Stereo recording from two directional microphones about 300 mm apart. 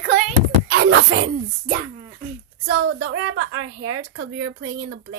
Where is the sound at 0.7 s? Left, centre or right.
Right.